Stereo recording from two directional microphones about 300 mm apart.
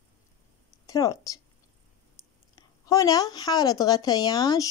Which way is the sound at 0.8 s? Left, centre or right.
Centre.